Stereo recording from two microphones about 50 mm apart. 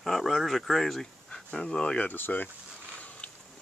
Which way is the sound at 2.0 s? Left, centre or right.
Left.